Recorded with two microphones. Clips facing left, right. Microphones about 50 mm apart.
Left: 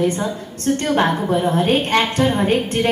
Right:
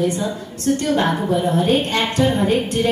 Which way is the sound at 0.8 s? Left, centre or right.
Left.